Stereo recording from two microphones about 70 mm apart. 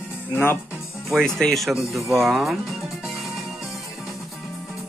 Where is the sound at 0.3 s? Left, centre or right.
Left.